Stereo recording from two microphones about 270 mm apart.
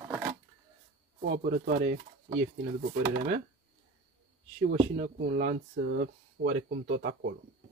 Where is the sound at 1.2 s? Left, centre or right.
Right.